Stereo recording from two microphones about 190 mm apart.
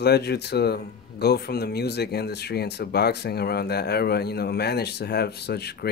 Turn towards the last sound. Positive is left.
turn(degrees=60)  # may be behind; listen again after turning